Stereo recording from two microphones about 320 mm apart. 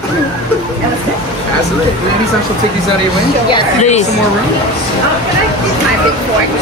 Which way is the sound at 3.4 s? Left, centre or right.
Centre.